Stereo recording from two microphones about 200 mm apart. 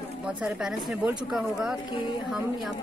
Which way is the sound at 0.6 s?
5° right (ahead or behind).